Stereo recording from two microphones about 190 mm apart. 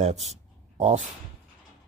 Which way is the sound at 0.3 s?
35° right (ahead or behind).